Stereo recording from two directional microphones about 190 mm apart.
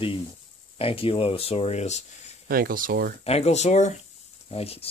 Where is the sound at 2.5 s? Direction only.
50° right (ahead or behind).